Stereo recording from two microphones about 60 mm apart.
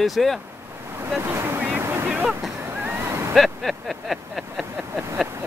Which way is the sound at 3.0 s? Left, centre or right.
Right.